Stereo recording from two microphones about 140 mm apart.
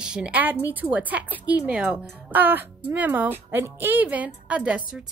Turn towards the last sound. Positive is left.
turn(degrees=-10)  # may be behind; listen again after turning